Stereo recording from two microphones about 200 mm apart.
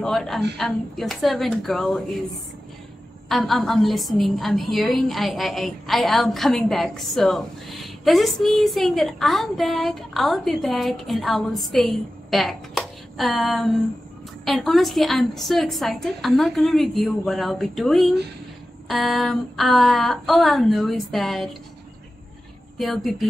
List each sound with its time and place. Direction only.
0.0 s a woman's voice: centre (ahead or behind)
3.3 s a woman's voice: centre (ahead or behind)
22.8 s a woman's voice: centre (ahead or behind)